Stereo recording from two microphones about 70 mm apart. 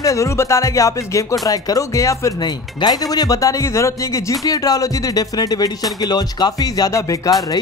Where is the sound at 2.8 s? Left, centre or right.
Left.